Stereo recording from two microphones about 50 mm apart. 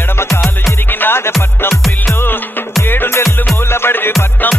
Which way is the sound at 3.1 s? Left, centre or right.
Left.